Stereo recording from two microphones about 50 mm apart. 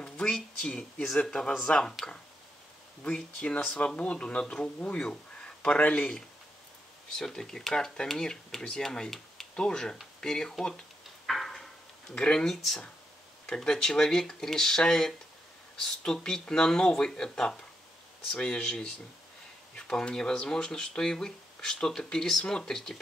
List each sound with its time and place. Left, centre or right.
0.0 s speech: centre
3.3 s speech: left
7.1 s speech: centre
11.2 s a sound: centre
12.2 s speech: centre
13.7 s speech: centre